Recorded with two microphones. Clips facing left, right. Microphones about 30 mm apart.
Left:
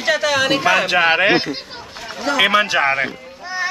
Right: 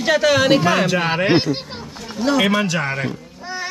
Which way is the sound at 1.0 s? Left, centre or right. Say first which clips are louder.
Left 5 dB; left.